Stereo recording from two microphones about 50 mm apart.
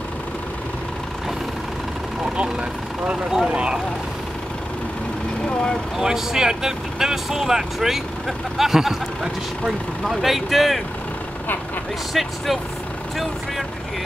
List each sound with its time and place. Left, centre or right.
3.4 s speech: centre
5.9 s speech: centre
12.1 s speech: centre